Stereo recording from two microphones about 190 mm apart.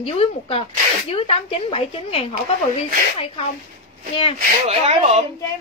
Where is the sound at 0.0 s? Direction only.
30° left (ahead or behind).